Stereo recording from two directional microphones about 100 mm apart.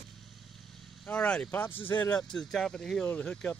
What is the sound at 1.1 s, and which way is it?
Speech, 15° left (ahead or behind).